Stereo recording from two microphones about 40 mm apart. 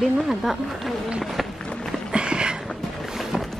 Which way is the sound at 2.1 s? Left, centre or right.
Right.